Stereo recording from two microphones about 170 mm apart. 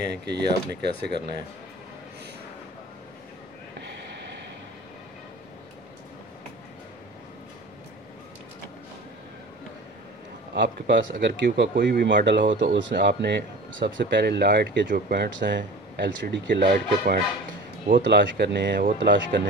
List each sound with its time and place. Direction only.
0.0 s speech: 75° right (ahead or behind)
10.5 s speech: 90° right
14.9 s speech: 70° right (ahead or behind)
18.0 s speech: 90° right
18.9 s speech: 90° right